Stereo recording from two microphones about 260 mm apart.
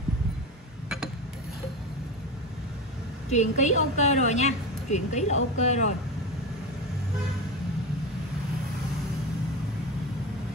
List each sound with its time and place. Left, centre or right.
3.3 s a woman's voice: left